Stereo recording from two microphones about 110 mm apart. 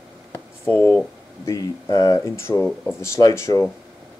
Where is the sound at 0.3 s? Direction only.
20° left (ahead or behind).